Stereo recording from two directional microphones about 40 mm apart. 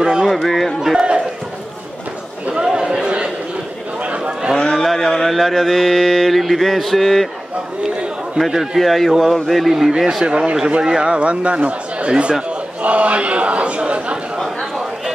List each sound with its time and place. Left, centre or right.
0.0 s a sound: centre
0.5 s speech: centre
0.9 s run: right
2.5 s chatter: centre
4.2 s a sound: centre
4.7 s speech: centre
8.7 s speech: centre
9.7 s speech: centre; by 14.1 s right
14.4 s a sound: centre